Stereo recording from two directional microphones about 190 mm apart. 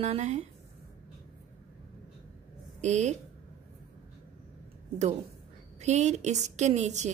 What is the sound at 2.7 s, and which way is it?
Speech, 35° right (ahead or behind).